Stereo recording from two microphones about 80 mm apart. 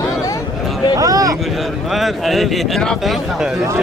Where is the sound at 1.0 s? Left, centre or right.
Right.